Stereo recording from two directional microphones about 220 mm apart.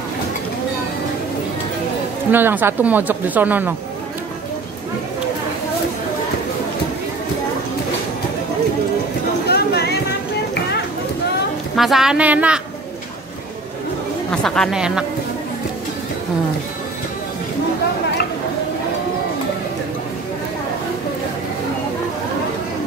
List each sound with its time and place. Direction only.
2.3 s speech: 10° right (ahead or behind)
9.5 s a sound: 45° left (ahead or behind)
11.7 s speech: centre (ahead or behind)
14.3 s speech: 5° left (ahead or behind)